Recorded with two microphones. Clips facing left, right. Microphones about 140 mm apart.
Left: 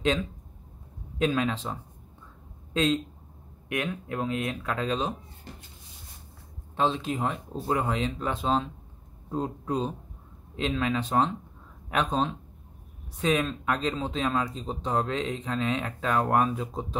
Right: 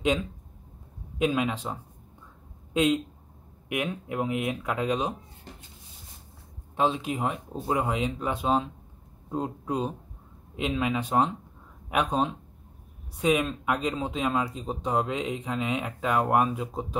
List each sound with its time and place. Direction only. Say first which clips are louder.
1.1 s speech: even; 10° right (ahead or behind)
6.8 s speech: right 1 dB; 10° right (ahead or behind)